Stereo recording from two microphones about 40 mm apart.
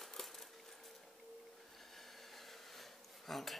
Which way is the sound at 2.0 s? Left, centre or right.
Centre.